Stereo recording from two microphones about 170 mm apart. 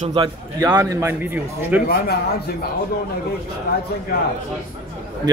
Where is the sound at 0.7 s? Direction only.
15° right (ahead or behind).